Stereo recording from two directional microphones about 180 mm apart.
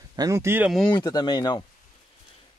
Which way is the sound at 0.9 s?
25° left (ahead or behind).